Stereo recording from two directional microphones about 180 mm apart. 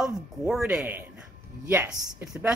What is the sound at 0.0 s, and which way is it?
Speech, 5° right (ahead or behind).